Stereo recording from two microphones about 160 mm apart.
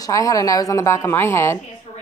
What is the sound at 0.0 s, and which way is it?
A woman's voice, 20° left (ahead or behind).